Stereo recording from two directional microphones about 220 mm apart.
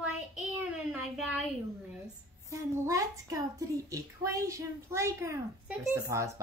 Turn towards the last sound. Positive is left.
turn(degrees=-15)  # may be behind; listen again after turning